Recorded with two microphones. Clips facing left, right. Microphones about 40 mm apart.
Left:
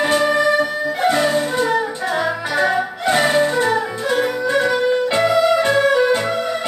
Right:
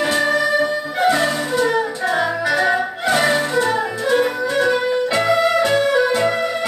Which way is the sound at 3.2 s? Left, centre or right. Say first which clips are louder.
Left 2 dB; centre.